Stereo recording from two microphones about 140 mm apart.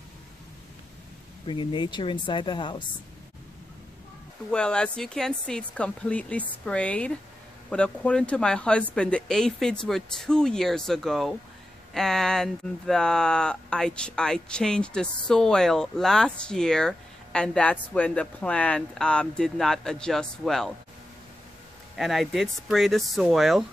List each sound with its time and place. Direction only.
1.5 s speech: 35° left (ahead or behind)
4.5 s speech: 5° left (ahead or behind)
21.9 s speech: centre (ahead or behind)